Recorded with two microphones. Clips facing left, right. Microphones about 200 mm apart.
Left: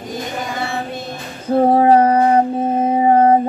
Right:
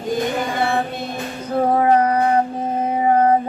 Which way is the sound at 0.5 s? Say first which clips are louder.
Right 4 dB; 55° right (ahead or behind).